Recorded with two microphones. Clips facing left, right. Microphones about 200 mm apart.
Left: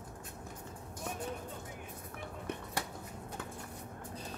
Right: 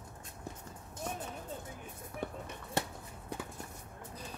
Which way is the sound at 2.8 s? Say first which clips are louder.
Right 7 dB; 25° right (ahead or behind).